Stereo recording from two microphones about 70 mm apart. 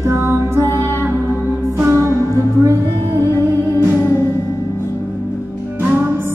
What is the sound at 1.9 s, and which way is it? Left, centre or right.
Music, right.